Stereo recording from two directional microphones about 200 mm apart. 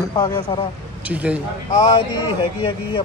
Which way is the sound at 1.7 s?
20° left (ahead or behind).